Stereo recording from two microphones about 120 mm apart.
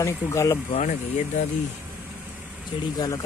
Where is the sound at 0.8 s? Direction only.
90° left.